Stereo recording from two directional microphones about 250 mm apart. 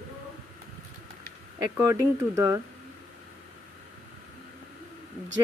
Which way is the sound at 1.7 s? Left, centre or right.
Centre.